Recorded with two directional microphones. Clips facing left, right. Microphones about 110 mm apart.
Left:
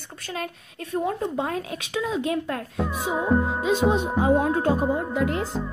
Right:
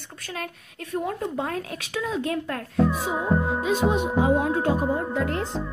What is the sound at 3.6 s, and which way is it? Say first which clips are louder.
Speech: left 1 dB; 30° left (ahead or behind).